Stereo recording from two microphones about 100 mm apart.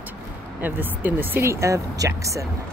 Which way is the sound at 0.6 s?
20° right (ahead or behind).